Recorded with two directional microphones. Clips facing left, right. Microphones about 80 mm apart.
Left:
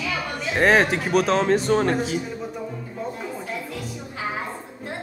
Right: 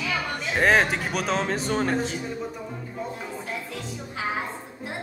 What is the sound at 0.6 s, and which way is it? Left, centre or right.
A man's voice, centre.